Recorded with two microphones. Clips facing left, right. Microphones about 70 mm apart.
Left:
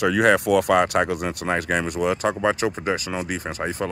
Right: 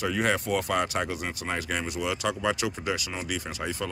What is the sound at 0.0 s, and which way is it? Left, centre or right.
Speech, left.